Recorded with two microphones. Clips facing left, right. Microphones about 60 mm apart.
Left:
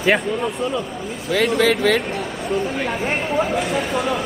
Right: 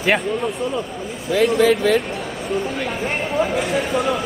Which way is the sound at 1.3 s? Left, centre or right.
Left.